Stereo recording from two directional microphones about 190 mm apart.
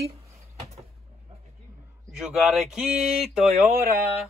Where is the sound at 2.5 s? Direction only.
Centre (ahead or behind).